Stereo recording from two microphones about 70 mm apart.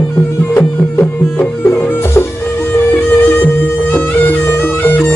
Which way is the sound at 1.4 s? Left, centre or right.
Left.